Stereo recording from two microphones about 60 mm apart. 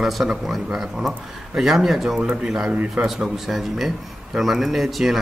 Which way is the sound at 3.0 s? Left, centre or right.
Centre.